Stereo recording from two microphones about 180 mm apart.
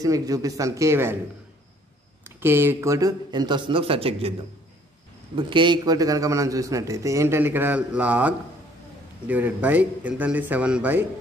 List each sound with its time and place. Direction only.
0.0 s a man's voice: 20° right (ahead or behind)
2.2 s speech: 10° right (ahead or behind); by 4.3 s 30° right (ahead or behind)
5.3 s a man's voice: 25° right (ahead or behind); by 11.1 s 10° right (ahead or behind)